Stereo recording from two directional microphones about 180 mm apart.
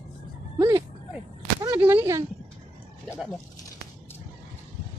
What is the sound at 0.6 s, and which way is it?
Speech, 20° right (ahead or behind).